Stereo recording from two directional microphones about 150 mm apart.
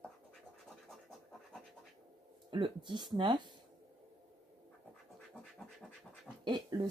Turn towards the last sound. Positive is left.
turn(degrees=-30)  # may be behind; listen again after turning